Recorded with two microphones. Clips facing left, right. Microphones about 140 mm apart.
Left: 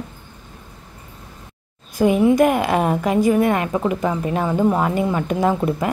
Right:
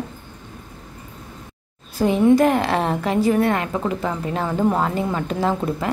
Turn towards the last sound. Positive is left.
turn(degrees=15)  # may be behind; listen again after turning